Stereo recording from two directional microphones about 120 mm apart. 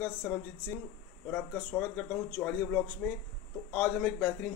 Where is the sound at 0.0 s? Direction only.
15° left (ahead or behind).